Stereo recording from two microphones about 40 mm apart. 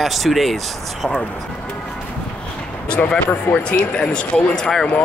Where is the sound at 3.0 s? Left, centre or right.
Left.